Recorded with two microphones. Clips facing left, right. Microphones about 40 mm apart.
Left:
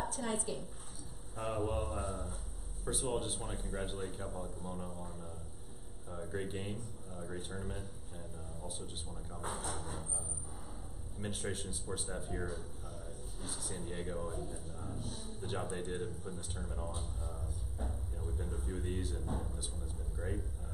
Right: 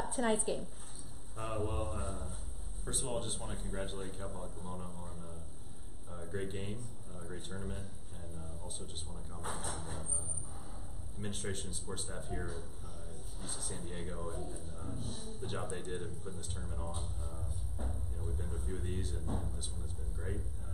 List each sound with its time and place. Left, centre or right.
0.1 s a woman's voice: right
1.3 s a man's voice: centre